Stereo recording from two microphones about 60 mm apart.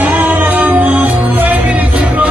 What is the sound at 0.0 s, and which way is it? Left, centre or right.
Music, right.